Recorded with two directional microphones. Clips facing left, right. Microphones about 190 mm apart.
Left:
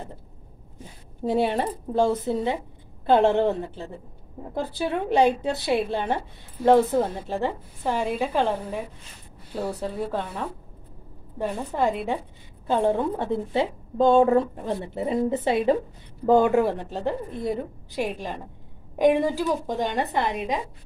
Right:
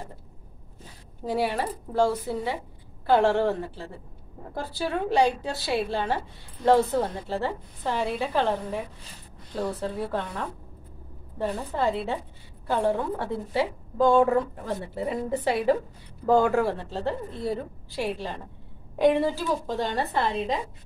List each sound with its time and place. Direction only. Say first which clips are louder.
0.7 s a woman's voice: left 7 dB; 25° left (ahead or behind)